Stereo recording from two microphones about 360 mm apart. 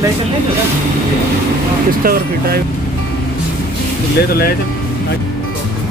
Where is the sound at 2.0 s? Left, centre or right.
Right.